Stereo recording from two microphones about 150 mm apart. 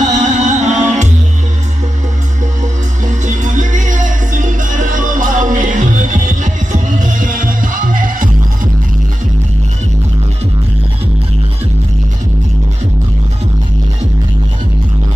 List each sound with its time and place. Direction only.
0.0 s music: 55° right (ahead or behind)
3.1 s music: 55° right (ahead or behind)